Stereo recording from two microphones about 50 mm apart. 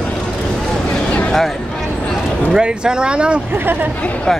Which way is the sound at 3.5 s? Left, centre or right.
Right.